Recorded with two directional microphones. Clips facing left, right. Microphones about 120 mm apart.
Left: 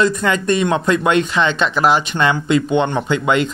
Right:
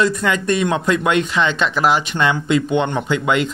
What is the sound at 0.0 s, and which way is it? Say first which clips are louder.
Speech: left 1 dB; 35° left (ahead or behind).